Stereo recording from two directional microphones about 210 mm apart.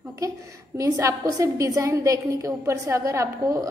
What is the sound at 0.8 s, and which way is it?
A woman's voice, 15° right (ahead or behind).